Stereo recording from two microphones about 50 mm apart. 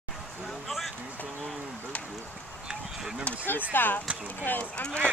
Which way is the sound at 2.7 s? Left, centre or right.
Centre.